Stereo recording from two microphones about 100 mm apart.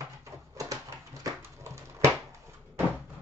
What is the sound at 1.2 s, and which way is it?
Dog, 30° right (ahead or behind).